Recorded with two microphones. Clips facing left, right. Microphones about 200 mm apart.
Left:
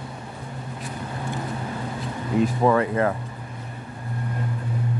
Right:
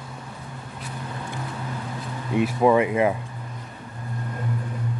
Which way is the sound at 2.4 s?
10° right (ahead or behind).